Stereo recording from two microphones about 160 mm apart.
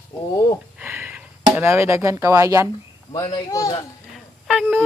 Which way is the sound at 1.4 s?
15° right (ahead or behind).